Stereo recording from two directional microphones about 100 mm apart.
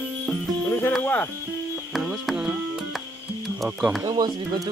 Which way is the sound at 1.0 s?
15° left (ahead or behind).